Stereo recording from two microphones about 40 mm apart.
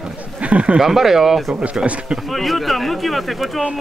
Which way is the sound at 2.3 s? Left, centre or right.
Centre.